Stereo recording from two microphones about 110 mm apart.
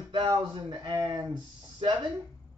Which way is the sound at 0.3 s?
40° right (ahead or behind).